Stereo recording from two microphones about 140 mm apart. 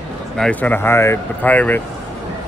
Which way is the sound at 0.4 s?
10° left (ahead or behind).